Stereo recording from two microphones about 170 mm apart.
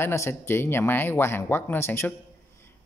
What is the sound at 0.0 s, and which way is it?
Speech, 15° left (ahead or behind).